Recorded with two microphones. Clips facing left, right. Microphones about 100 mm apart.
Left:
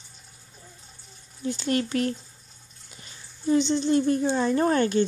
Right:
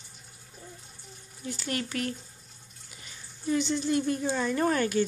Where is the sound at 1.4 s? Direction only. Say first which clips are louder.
Left 7 dB; 25° left (ahead or behind).